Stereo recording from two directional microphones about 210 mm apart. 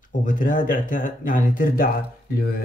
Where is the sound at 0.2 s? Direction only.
40° left (ahead or behind).